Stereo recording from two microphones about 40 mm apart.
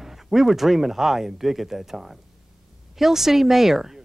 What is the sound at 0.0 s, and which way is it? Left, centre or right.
Speech, centre.